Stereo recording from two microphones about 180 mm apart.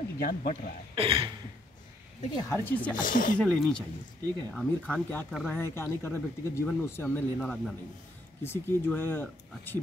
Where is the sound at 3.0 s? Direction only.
50° left (ahead or behind).